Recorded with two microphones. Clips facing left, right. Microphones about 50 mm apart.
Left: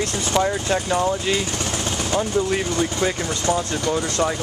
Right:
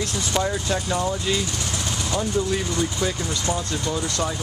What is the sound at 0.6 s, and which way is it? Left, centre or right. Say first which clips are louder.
Speech: left 4 dB; left.